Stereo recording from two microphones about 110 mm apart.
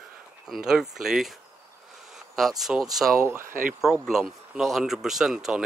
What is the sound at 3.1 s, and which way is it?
Speech, 25° right (ahead or behind).